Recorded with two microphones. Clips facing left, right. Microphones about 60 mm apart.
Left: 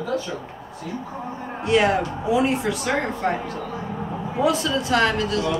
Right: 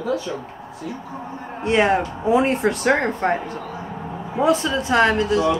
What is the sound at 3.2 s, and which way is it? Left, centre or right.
Speech, right.